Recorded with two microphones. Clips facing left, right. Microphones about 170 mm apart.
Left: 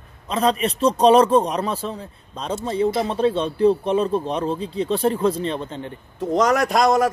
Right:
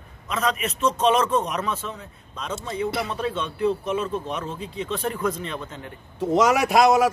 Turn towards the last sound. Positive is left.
turn(degrees=-5)  # may be behind; listen again after turning